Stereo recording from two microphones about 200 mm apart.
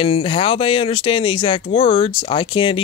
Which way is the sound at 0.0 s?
25° left (ahead or behind).